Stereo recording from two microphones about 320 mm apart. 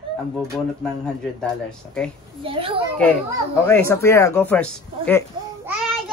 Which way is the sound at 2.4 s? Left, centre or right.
Centre.